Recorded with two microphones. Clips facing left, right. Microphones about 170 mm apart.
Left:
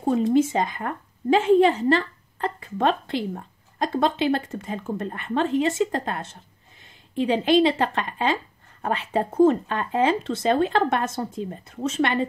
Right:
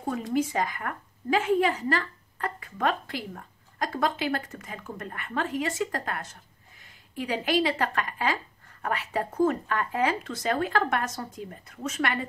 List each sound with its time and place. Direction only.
0.0 s a woman's voice: 25° left (ahead or behind)